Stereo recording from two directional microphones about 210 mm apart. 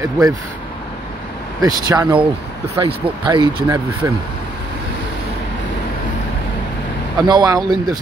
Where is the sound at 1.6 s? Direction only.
20° right (ahead or behind).